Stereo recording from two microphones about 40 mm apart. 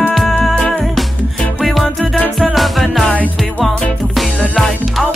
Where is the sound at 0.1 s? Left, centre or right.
Centre.